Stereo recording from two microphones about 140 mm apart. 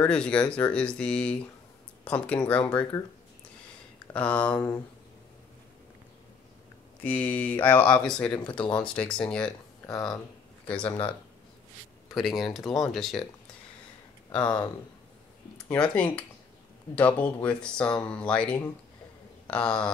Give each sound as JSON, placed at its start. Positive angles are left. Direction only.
{"t": 0.0, "sound": "speech", "side_deg": 5}
{"t": 4.1, "sound": "speech", "side_deg": 10}
{"t": 7.0, "sound": "speech", "side_deg": 10}
{"t": 8.3, "sound": "speech", "side_deg": 35}
{"t": 8.7, "sound": "speech", "side_deg": 5}
{"t": 9.4, "sound": "speech", "side_deg": 25}
{"t": 10.7, "sound": "speech", "side_deg": 10}
{"t": 12.1, "sound": "speech", "side_deg": 0}
{"t": 14.3, "sound": "speech", "side_deg": 30}
{"t": 15.5, "sound": "speech", "side_deg": 10}